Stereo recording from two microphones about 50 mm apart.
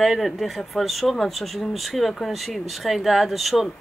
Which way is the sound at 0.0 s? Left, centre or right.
Centre.